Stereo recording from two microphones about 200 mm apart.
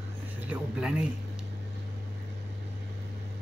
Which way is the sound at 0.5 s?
5° right (ahead or behind).